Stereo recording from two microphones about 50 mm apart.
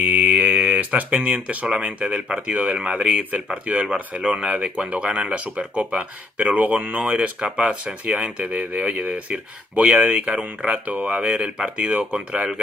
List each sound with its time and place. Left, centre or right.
0.1 s speech: right
2.7 s speech: centre
3.1 s speech: right
3.8 s speech: right
7.3 s speech: right